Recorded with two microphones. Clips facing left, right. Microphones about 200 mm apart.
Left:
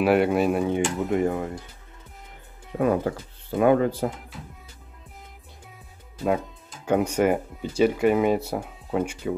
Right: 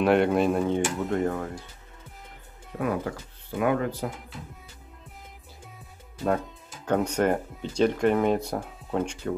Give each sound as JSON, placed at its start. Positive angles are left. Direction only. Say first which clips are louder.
{"t": 0.0, "sound": "speech", "louder": "left 1 dB", "side_deg": 5}
{"t": 2.7, "sound": "speech", "louder": "left 6 dB", "side_deg": 30}
{"t": 6.9, "sound": "speech", "louder": "left 2 dB", "side_deg": 10}